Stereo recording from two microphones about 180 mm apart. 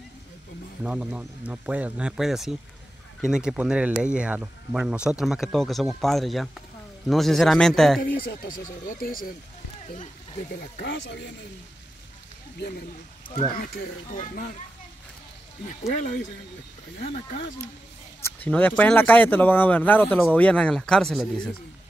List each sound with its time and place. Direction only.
0.8 s speech: 5° right (ahead or behind)
8.0 s speech: 55° left (ahead or behind)
10.6 s speech: 70° left (ahead or behind)
13.7 s speech: 50° left (ahead or behind)
17.0 s speech: 50° left (ahead or behind)
18.4 s speech: 10° left (ahead or behind)